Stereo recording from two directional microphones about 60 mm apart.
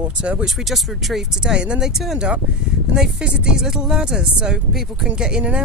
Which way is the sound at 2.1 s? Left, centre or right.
Centre.